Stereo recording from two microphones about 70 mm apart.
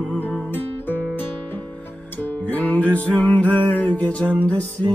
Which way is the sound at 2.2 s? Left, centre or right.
Left.